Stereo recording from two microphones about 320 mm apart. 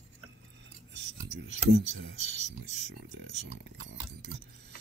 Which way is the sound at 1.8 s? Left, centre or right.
Right.